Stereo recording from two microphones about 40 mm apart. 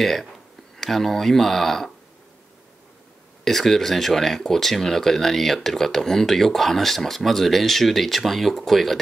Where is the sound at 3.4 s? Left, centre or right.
Centre.